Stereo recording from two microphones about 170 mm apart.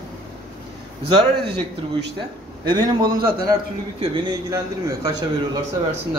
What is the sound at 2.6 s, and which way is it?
A man's voice, 25° right (ahead or behind).